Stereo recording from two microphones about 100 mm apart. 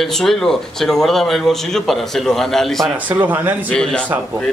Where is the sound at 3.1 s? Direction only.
20° right (ahead or behind).